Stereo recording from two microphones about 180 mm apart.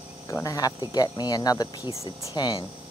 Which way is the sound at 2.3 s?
25° left (ahead or behind).